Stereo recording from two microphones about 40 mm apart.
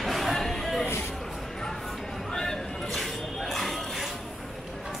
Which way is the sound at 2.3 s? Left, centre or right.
Centre.